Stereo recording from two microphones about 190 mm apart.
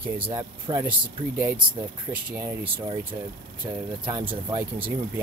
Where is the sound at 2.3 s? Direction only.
10° right (ahead or behind).